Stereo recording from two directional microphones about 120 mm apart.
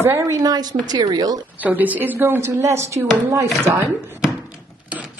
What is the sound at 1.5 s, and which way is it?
A woman's voice, 15° right (ahead or behind).